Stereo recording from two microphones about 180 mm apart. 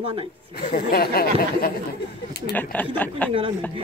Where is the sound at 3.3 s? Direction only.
30° right (ahead or behind).